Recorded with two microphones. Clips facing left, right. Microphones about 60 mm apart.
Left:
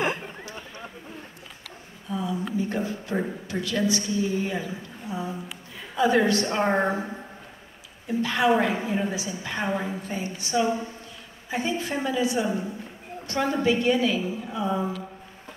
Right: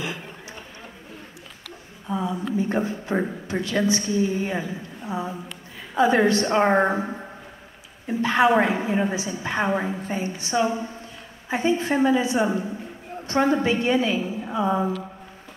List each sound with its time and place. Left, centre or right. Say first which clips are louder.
2.0 s a woman's voice: right 3 dB; right
8.1 s a woman's voice: right 3 dB; right